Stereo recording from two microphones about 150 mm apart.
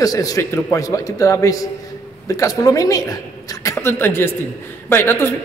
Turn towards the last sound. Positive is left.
turn(degrees=15)  # may be behind; listen again after turning